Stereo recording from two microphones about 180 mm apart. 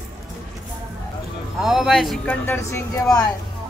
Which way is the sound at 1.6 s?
Centre (ahead or behind).